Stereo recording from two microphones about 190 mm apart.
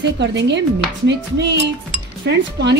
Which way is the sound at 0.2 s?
65° right (ahead or behind).